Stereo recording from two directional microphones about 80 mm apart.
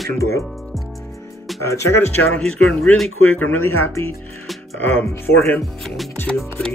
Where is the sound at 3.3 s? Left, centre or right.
Centre.